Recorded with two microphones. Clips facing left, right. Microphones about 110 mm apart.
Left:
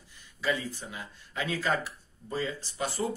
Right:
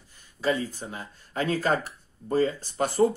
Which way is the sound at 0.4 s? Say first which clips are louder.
Right 4 dB; 40° right (ahead or behind).